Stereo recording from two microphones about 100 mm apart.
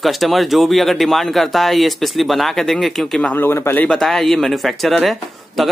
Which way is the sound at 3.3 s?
25° left (ahead or behind).